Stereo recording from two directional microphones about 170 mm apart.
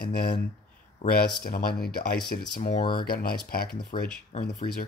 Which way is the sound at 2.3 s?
50° left (ahead or behind).